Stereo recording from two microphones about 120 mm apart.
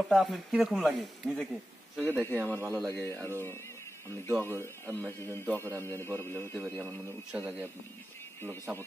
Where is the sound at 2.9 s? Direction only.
20° left (ahead or behind).